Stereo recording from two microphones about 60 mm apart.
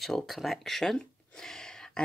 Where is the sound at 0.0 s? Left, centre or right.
Centre.